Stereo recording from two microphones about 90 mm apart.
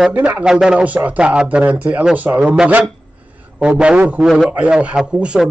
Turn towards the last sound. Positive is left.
turn(degrees=-10)  # may be behind; listen again after turning